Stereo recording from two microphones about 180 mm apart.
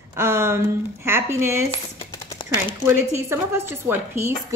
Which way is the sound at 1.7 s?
25° left (ahead or behind).